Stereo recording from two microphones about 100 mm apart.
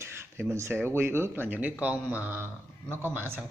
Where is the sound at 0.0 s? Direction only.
25° right (ahead or behind).